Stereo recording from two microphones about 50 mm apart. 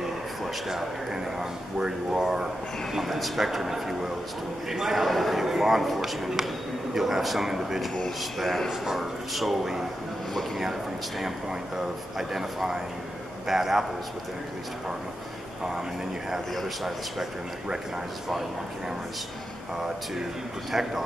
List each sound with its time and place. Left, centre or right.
0.7 s a man's voice: centre
16.5 s a man's voice: centre
20.7 s speech: centre